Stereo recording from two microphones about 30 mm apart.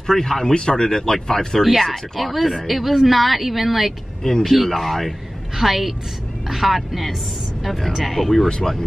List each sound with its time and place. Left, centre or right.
0.0 s speech: centre
1.6 s a woman's voice: centre